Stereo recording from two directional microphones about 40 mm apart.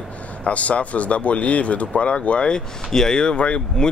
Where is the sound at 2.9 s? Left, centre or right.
Centre.